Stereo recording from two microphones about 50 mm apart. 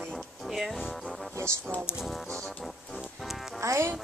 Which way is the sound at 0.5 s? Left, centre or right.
Centre.